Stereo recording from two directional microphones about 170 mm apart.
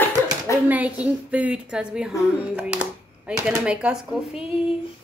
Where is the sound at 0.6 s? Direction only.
10° right (ahead or behind).